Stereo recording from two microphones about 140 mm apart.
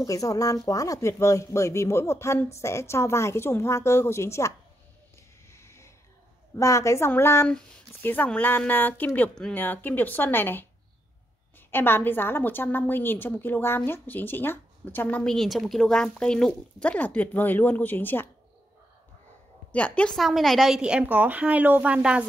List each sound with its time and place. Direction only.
0.0 s speech: 25° left (ahead or behind)
5.5 s a sound: 20° left (ahead or behind)
6.5 s a woman's voice: 20° left (ahead or behind)
11.7 s a woman's voice: 15° left (ahead or behind)
19.7 s a woman's voice: 10° left (ahead or behind); by 22.2 s 10° right (ahead or behind)